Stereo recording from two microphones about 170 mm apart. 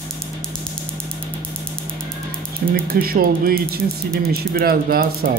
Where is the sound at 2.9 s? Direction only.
60° right (ahead or behind).